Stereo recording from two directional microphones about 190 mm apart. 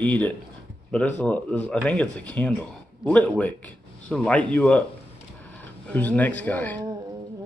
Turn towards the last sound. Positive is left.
turn(degrees=10)  # may be behind; listen again after turning